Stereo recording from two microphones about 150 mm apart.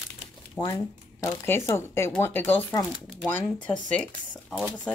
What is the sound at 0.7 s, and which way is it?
Speech, 20° left (ahead or behind).